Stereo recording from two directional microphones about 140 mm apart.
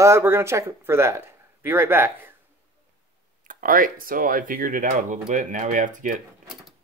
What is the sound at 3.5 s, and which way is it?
Speech, 75° right (ahead or behind).